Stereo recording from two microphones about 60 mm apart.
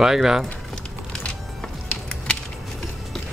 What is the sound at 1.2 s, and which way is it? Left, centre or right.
Music, centre.